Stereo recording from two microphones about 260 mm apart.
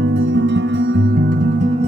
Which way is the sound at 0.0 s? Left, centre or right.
Right.